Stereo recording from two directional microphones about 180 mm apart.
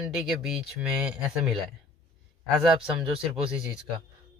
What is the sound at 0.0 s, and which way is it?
Speech, 5° right (ahead or behind).